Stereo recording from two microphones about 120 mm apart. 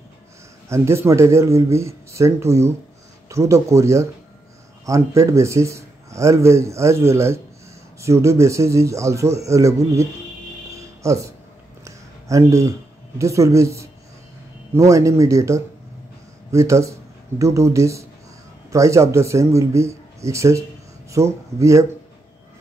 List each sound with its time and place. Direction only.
0.7 s speech: 20° right (ahead or behind)
11.0 s speech: 25° right (ahead or behind)
11.8 s a sound: 25° right (ahead or behind)
13.2 s speech: 25° right (ahead or behind)